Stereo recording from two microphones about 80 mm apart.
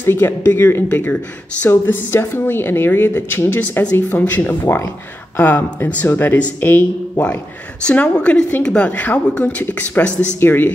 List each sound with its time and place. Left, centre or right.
0.0 s a woman's voice: left